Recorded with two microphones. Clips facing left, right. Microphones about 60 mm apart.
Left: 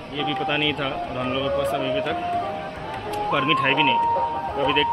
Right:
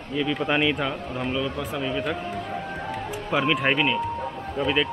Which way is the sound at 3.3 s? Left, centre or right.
Centre.